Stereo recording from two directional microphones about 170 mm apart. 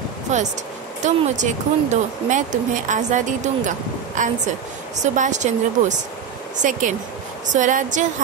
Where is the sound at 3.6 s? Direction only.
50° right (ahead or behind).